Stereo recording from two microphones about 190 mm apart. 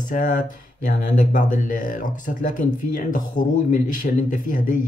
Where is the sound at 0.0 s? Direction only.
45° left (ahead or behind).